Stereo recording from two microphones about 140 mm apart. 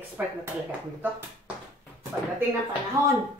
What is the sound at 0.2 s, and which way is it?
Speech, 10° right (ahead or behind).